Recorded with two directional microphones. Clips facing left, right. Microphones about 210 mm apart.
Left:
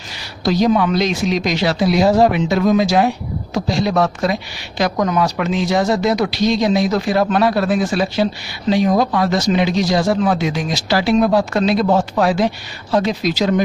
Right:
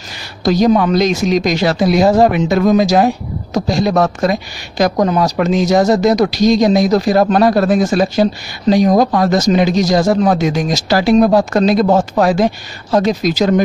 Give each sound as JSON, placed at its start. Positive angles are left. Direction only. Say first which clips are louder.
{"t": 0.4, "sound": "speech", "louder": "right 3 dB", "side_deg": -45}